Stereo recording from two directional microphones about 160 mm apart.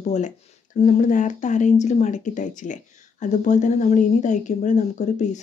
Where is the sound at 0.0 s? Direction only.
45° left (ahead or behind).